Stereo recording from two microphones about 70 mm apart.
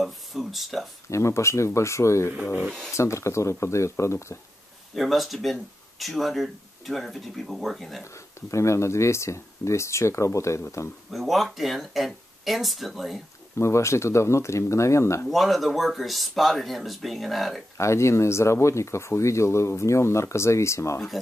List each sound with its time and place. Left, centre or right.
0.0 s speech: centre
1.1 s speech: left
2.6 s speech: centre
2.9 s speech: left
4.9 s speech: centre
8.0 s speech: left
11.1 s speech: centre
13.6 s speech: left
15.2 s speech: centre
17.7 s speech: left